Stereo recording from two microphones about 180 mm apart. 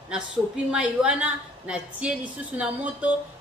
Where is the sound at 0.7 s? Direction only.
5° right (ahead or behind).